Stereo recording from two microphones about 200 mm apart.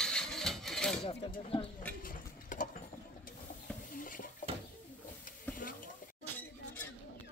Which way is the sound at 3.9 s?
45° left (ahead or behind).